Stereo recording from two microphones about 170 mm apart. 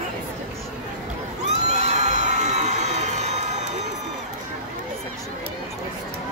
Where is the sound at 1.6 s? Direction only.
40° right (ahead or behind).